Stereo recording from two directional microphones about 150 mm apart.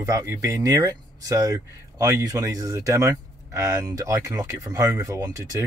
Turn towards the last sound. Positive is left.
turn(degrees=-20)  # may be behind; listen again after turning